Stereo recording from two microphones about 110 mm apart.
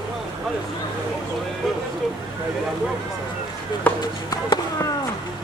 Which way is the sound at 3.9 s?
15° left (ahead or behind).